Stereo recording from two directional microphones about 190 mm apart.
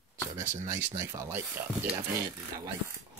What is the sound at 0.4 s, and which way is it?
Speech, 15° right (ahead or behind).